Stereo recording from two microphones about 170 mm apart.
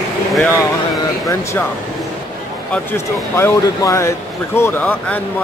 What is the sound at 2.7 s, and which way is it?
Speech, 15° left (ahead or behind).